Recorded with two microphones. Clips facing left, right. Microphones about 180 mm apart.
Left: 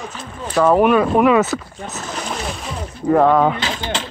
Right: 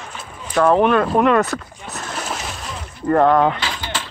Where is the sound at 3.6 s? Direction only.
20° left (ahead or behind).